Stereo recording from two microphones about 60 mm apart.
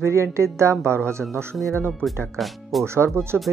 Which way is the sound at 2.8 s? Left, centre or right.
Right.